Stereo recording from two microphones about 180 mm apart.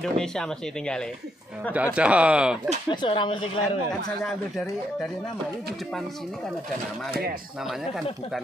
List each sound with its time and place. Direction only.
0.2 s speech: 5° left (ahead or behind)
1.7 s speech: 5° right (ahead or behind)
2.9 s speech: 25° left (ahead or behind)